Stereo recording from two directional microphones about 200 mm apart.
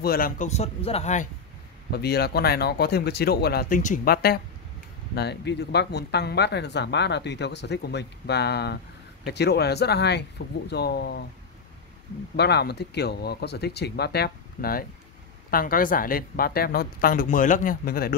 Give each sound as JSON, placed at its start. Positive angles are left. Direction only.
{"t": 0.0, "sound": "speech", "side_deg": 45}
{"t": 1.9, "sound": "a woman's voice", "side_deg": 55}
{"t": 12.4, "sound": "a woman's voice", "side_deg": 55}